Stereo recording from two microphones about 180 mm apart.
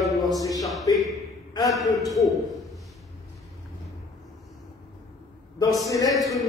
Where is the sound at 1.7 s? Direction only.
Centre (ahead or behind).